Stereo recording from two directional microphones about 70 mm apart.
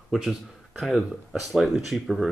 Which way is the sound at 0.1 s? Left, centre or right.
Centre.